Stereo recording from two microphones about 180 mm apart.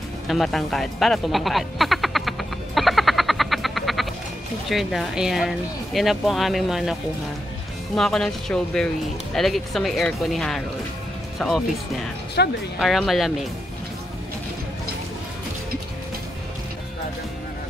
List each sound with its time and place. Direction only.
0.3 s music: centre (ahead or behind)
4.6 s speech: centre (ahead or behind)
12.4 s speech: 65° left (ahead or behind)
12.7 s speech: centre (ahead or behind)